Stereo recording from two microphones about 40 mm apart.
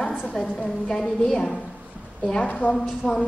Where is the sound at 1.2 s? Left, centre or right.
Centre.